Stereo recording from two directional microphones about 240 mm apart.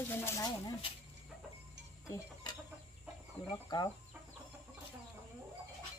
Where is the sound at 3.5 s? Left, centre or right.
Centre.